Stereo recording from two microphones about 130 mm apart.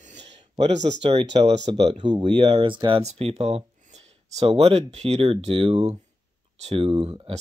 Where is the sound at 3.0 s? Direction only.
55° right (ahead or behind).